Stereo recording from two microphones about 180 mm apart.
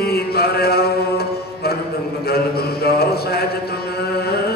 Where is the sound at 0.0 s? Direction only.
60° left (ahead or behind).